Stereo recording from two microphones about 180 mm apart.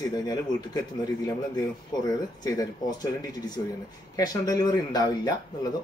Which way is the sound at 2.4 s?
20° left (ahead or behind).